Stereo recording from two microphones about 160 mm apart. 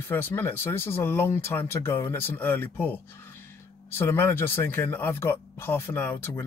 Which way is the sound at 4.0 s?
15° left (ahead or behind).